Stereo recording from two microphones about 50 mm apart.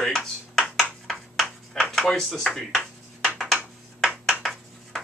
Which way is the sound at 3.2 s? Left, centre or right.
Centre.